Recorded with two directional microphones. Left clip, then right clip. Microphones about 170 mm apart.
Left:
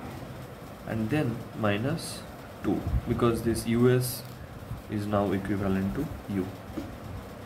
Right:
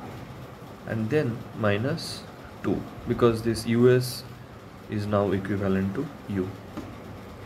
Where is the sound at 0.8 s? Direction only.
15° right (ahead or behind).